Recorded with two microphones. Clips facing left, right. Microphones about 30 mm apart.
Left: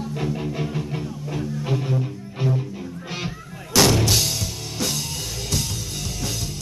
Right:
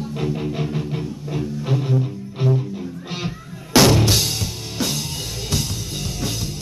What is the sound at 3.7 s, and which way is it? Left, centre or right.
Music, right.